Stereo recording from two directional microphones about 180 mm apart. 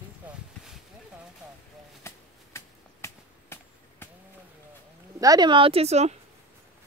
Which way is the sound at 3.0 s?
15° left (ahead or behind).